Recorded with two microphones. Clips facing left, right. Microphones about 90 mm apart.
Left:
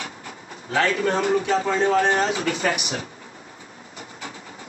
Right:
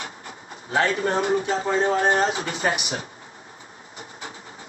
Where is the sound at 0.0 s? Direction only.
30° right (ahead or behind).